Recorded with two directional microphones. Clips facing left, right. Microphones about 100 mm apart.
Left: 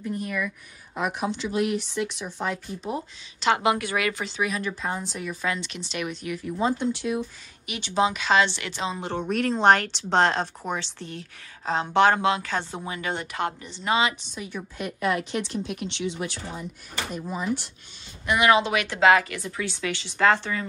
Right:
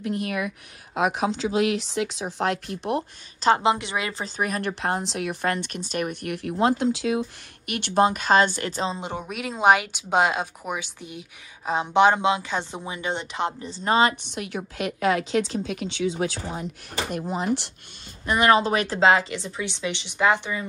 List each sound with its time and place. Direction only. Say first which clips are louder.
0.0 s speech: right 2 dB; 85° right
0.9 s speech: right 4 dB; 90° right
2.3 s speech: right 7 dB; 75° right (ahead or behind)
3.3 s speech: right 2 dB; 35° right (ahead or behind)
4.4 s speech: right 4 dB; 55° right (ahead or behind)
6.6 s speech: right 4 dB; 90° right
7.7 s speech: right 3 dB; 55° right (ahead or behind); by 8.9 s 40° right (ahead or behind)
8.9 s speech: left 1 dB; 15° right (ahead or behind)
9.2 s speech: left 2 dB; 5° right (ahead or behind); by 13.7 s 20° right (ahead or behind)
13.7 s a woman's voice: right 4 dB; 40° right (ahead or behind)
14.3 s speech: right 4 dB; 80° right
17.1 s speech: right 3 dB; 70° right (ahead or behind)
18.2 s speech: right 1 dB; 35° right (ahead or behind); by 20.6 s 15° right (ahead or behind)